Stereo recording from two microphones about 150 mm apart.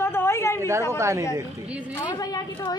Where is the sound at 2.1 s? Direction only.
25° left (ahead or behind).